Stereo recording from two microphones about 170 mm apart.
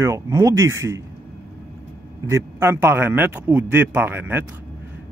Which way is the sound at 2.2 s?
15° right (ahead or behind).